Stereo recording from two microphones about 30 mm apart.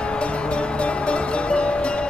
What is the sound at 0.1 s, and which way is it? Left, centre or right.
Music, left.